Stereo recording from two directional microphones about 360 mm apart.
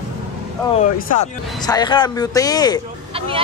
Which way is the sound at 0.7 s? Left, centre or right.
Centre.